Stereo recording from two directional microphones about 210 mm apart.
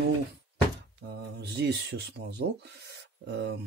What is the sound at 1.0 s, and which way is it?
Speech, 50° right (ahead or behind).